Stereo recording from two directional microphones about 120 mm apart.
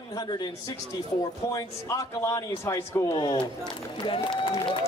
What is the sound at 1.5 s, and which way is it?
A man's voice, 25° left (ahead or behind).